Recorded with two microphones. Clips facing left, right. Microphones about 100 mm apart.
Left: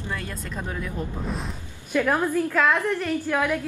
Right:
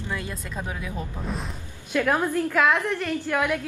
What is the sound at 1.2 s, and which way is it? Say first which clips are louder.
Speech: left 1 dB; centre (ahead or behind).